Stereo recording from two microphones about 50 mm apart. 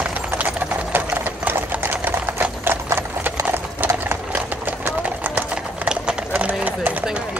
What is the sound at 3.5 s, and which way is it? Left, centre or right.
Horse, right.